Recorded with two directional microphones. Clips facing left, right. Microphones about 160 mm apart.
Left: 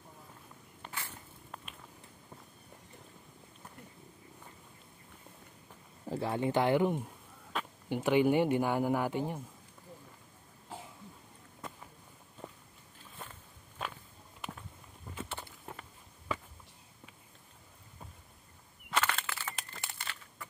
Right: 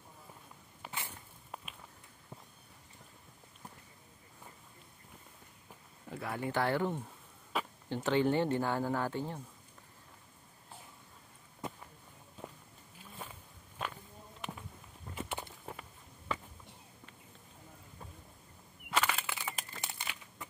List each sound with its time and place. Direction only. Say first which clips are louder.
0.8 s a sound: even; 5° right (ahead or behind)
6.0 s speech: left 6 dB; 30° left (ahead or behind)
7.5 s a sound: right 2 dB; 5° right (ahead or behind)
7.9 s speech: left 3 dB; 10° left (ahead or behind)
10.7 s cough: left 8 dB; 90° left
13.2 s walk: even; 5° right (ahead or behind)
15.1 s walk: right 2 dB; 10° right (ahead or behind)
18.9 s a sound: even; 5° right (ahead or behind)
19.2 s crumpling: even; 10° right (ahead or behind)